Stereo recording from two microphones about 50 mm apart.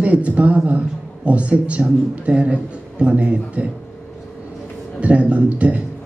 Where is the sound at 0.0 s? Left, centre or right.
Right.